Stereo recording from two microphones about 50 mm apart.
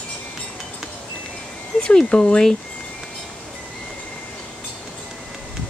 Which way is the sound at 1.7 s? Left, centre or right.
Centre.